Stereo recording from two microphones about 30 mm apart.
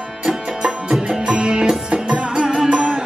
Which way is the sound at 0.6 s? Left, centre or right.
Right.